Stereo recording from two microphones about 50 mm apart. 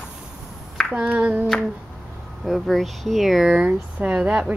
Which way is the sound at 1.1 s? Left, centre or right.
Right.